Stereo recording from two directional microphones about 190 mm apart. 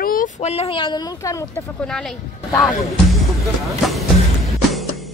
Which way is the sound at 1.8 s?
5° left (ahead or behind).